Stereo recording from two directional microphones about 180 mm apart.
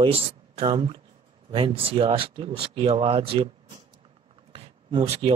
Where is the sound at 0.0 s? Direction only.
30° right (ahead or behind).